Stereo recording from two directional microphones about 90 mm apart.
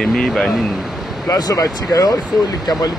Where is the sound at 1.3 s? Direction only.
45° left (ahead or behind).